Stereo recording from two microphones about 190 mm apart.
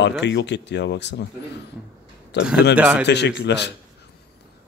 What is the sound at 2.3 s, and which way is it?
Speech, 65° left (ahead or behind).